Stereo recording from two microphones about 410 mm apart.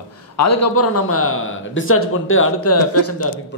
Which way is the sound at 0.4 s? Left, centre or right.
Left.